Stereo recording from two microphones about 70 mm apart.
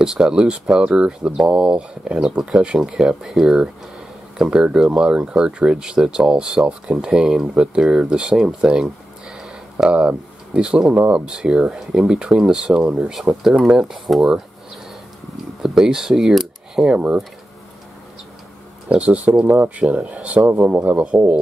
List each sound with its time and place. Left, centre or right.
0.0 s speech: centre
9.8 s speech: centre
15.6 s speech: centre
18.9 s speech: centre